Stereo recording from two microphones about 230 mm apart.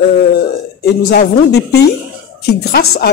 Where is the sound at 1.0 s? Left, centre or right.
Left.